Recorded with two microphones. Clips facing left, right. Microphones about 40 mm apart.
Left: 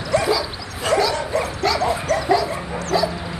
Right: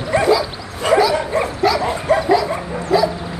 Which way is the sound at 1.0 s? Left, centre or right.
Centre.